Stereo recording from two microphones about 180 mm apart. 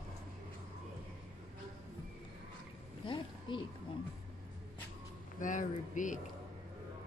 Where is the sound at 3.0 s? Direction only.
25° left (ahead or behind).